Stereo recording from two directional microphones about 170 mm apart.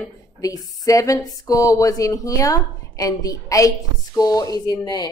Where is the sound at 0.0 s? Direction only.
20° left (ahead or behind).